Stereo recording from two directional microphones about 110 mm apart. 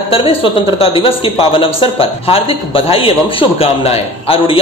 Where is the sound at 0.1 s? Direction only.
55° left (ahead or behind).